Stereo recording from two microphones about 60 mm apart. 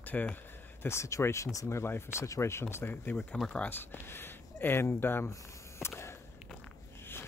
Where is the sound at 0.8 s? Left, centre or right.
Left.